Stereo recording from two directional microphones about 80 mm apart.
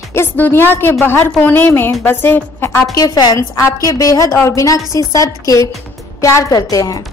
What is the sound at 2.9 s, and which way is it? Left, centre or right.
A woman's voice, left.